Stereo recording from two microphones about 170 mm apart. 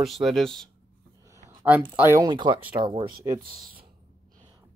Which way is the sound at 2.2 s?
25° right (ahead or behind).